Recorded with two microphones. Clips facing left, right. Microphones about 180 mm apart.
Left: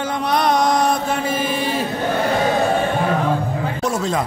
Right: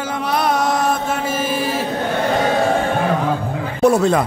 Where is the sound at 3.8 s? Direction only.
65° right (ahead or behind).